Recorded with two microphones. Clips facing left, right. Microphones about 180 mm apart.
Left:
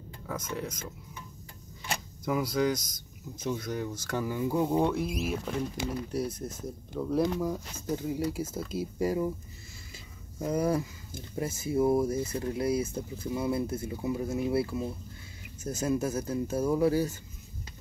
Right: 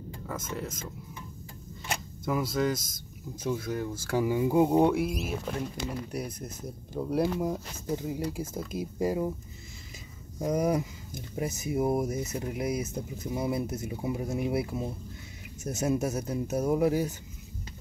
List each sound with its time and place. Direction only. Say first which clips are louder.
0.3 s speech: left 1 dB; centre (ahead or behind)
2.2 s speech: even; centre (ahead or behind)
4.1 s speech: right 5 dB; 15° right (ahead or behind)
10.4 s speech: right 1 dB; 15° right (ahead or behind)